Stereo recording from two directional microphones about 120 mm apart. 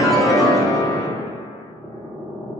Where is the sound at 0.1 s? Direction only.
Centre (ahead or behind).